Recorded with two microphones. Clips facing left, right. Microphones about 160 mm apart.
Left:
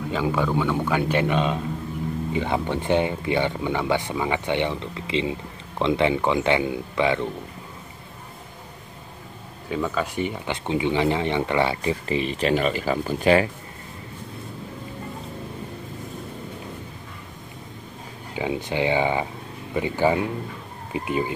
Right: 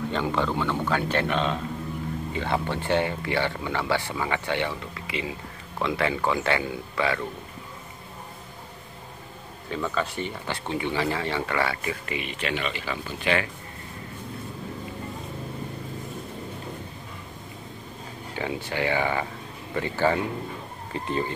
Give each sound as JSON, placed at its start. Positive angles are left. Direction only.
{"t": 0.1, "sound": "a man's voice", "side_deg": 5}
{"t": 9.7, "sound": "speech", "side_deg": 10}
{"t": 18.3, "sound": "a man's voice", "side_deg": 15}